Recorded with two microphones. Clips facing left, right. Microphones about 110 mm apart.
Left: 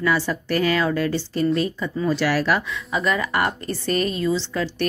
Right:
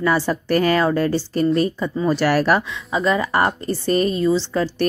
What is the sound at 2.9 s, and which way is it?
A woman's voice, 30° right (ahead or behind).